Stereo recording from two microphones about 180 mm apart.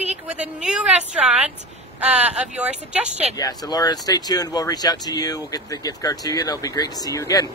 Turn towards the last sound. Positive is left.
turn(degrees=20)  # may be behind; listen again after turning